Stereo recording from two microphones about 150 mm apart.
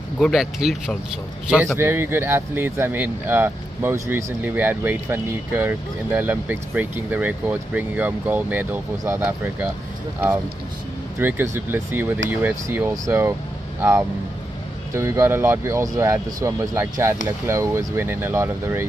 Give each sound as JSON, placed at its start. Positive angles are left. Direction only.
{"t": 0.2, "sound": "speech", "side_deg": 0}
{"t": 11.1, "sound": "speech", "side_deg": -15}
{"t": 14.9, "sound": "speech", "side_deg": -15}